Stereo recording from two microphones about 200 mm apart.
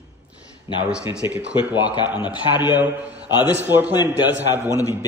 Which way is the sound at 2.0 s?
25° left (ahead or behind).